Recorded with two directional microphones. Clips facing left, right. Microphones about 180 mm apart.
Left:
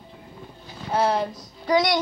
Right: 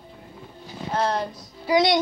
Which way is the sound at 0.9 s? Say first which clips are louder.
Left 2 dB; 5° left (ahead or behind).